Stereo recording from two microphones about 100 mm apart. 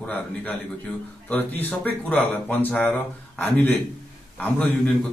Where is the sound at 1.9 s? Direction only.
15° left (ahead or behind).